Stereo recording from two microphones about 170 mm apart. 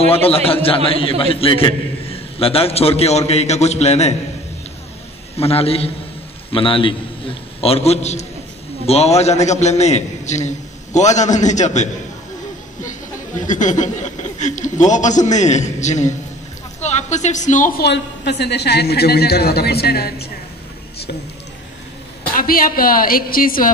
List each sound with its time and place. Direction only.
0.0 s a man's voice: 35° left (ahead or behind)
5.4 s a man's voice: 35° left (ahead or behind)
13.4 s a man's voice: 50° left (ahead or behind)
17.8 s a woman's voice: 85° left; by 20.2 s 65° left (ahead or behind)
22.3 s a woman's voice: 55° left (ahead or behind)